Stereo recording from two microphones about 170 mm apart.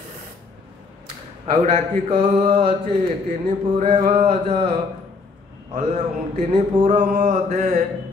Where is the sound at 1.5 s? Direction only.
40° right (ahead or behind).